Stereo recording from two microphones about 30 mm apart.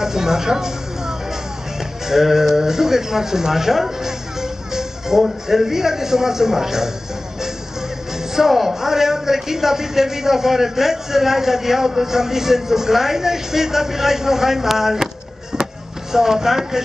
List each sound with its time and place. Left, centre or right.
0.0 s speech: centre
8.4 s speech: centre
15.5 s chop: centre